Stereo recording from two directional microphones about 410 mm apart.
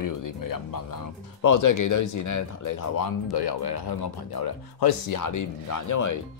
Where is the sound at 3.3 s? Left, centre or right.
Left.